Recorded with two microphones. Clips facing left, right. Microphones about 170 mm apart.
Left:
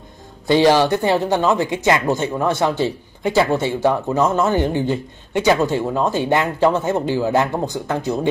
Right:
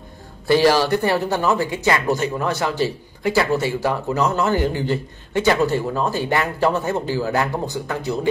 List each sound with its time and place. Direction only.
0.5 s speech: 20° left (ahead or behind)